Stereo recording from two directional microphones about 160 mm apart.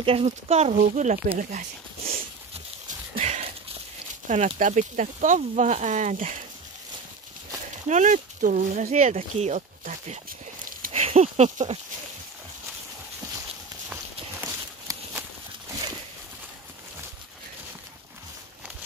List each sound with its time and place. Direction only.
0.0 s speech: 35° right (ahead or behind)
3.2 s a sound: 40° right (ahead or behind)
4.3 s speech: 50° right (ahead or behind)
7.9 s speech: 50° right (ahead or behind)
13.8 s walk: 15° right (ahead or behind)